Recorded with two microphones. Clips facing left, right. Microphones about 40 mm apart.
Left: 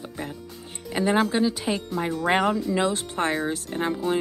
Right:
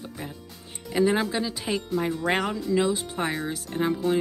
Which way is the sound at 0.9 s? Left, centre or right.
Centre.